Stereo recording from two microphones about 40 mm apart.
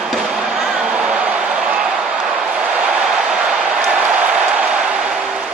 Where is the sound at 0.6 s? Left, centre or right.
Right.